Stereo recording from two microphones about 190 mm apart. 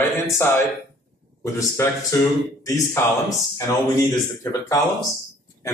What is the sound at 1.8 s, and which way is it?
Speech, 15° left (ahead or behind).